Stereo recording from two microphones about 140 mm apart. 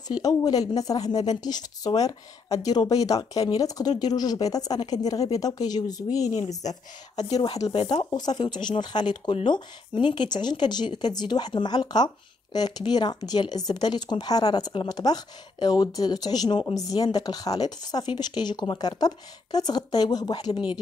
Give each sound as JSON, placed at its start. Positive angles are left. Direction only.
{"t": 0.1, "sound": "speech", "side_deg": 25}
{"t": 6.6, "sound": "speech", "side_deg": 60}
{"t": 7.2, "sound": "speech", "side_deg": 30}